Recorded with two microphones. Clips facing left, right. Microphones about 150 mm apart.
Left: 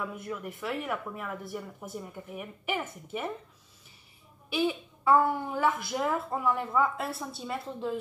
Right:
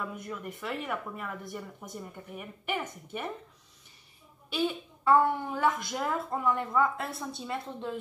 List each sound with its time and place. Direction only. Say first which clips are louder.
0.0 s a woman's voice: left 2 dB; centre (ahead or behind)
4.5 s a woman's voice: left 2 dB; 5° left (ahead or behind)